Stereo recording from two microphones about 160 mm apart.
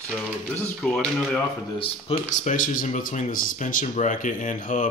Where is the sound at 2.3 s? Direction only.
50° left (ahead or behind).